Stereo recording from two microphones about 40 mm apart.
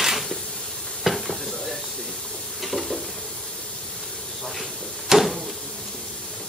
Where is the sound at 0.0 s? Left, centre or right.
Centre.